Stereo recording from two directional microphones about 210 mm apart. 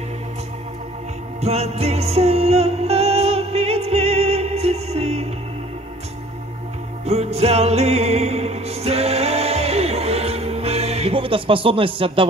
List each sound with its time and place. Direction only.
1.4 s music: 30° right (ahead or behind)
7.1 s music: 30° right (ahead or behind)